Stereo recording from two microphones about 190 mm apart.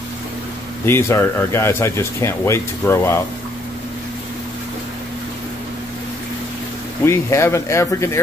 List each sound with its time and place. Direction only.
0.8 s speech: 15° left (ahead or behind)
7.1 s speech: 15° left (ahead or behind)